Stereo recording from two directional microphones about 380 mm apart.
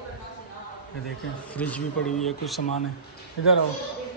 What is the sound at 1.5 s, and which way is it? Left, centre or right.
A man's voice, centre.